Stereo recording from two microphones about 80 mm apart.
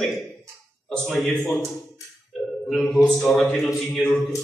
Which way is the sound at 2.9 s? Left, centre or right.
Centre.